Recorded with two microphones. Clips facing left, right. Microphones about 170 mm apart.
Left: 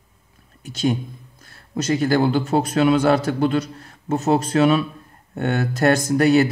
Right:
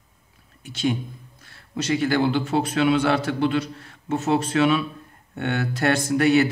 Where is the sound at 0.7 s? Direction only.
40° left (ahead or behind).